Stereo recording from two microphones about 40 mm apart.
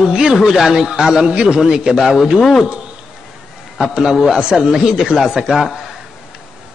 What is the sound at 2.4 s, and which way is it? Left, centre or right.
Speech, centre.